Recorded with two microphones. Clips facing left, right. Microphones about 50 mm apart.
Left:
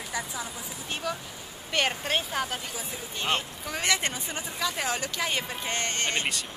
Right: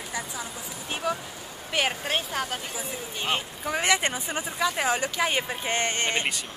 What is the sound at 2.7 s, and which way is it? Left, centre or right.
Speech, centre.